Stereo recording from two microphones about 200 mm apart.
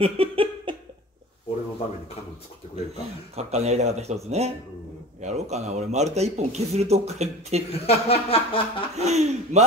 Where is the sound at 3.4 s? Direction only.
30° right (ahead or behind).